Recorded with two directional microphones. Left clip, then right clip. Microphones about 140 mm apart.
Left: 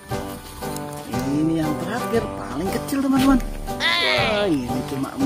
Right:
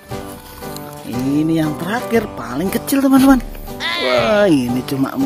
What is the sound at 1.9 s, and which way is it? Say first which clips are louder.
Speech: right 5 dB; 80° right.